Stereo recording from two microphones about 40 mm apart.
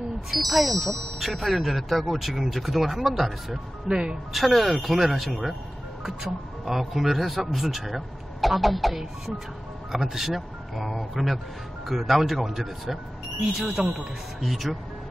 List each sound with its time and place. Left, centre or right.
0.3 s speech: centre
3.8 s speech: centre
4.3 s speech: centre